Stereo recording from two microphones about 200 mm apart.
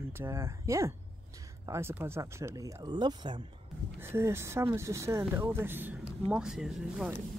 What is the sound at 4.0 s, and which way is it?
Speech, 10° right (ahead or behind).